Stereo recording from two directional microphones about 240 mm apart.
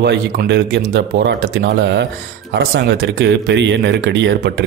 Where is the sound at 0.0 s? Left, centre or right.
Right.